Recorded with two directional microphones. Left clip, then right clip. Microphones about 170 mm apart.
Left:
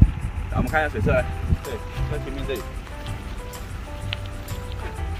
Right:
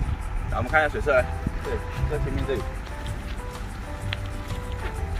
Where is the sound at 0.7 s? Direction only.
20° right (ahead or behind).